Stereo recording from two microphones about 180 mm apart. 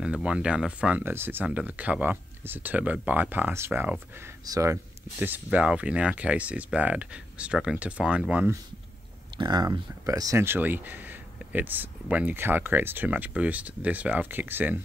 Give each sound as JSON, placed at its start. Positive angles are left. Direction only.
{"t": 0.0, "sound": "speech", "side_deg": -5}
{"t": 9.4, "sound": "speech", "side_deg": -25}